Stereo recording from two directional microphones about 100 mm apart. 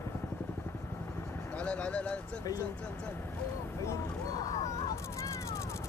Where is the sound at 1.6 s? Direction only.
15° left (ahead or behind).